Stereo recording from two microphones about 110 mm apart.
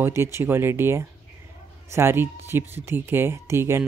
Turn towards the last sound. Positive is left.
turn(degrees=-25)  # may be behind; listen again after turning